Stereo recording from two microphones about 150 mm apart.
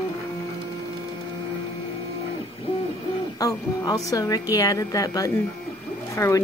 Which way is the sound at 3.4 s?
25° left (ahead or behind).